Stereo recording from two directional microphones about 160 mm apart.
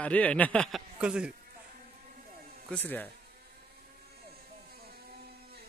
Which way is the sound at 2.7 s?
10° left (ahead or behind).